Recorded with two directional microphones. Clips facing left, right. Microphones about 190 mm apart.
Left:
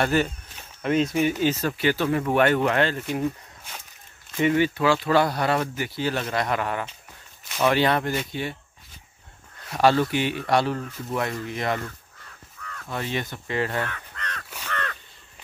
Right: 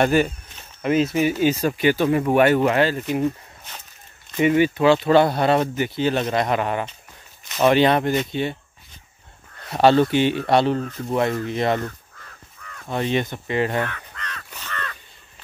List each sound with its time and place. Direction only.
0.0 s speech: 15° right (ahead or behind)
4.4 s speech: 15° right (ahead or behind)
9.7 s speech: 25° right (ahead or behind)
12.8 s speech: 25° right (ahead or behind)
14.1 s crow: 50° left (ahead or behind)
14.7 s crow: 65° left (ahead or behind)